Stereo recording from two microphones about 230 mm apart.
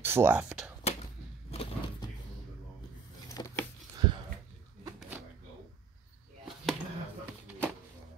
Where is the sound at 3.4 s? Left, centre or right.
Centre.